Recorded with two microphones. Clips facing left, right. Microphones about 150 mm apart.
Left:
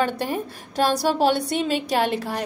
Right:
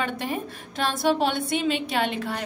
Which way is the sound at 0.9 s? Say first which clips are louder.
Left 2 dB; 40° left (ahead or behind).